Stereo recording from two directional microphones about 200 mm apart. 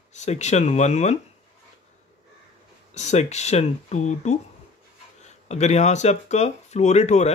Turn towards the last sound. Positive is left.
turn(degrees=35)  # may be behind; listen again after turning